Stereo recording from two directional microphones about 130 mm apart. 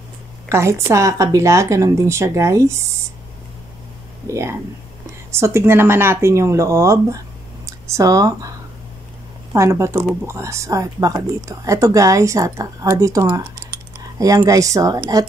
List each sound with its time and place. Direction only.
0.5 s speech: 20° right (ahead or behind)
4.3 s speech: 20° right (ahead or behind)